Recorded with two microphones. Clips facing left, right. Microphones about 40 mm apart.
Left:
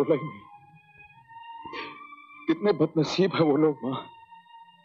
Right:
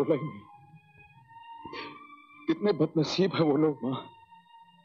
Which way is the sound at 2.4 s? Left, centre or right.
Centre.